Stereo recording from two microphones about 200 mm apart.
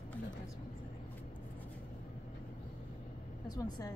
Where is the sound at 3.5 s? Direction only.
20° left (ahead or behind).